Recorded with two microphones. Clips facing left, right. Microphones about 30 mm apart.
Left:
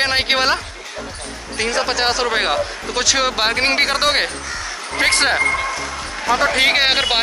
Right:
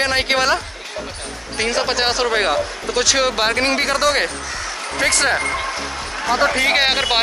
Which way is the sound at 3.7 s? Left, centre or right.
Left.